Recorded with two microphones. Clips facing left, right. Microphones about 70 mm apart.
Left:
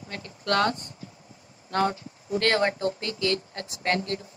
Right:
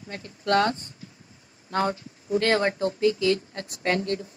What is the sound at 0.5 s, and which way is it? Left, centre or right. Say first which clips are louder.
Speech: right 2 dB; right.